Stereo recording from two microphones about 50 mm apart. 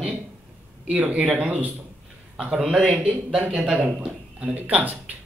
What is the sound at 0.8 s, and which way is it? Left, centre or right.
Speech, right.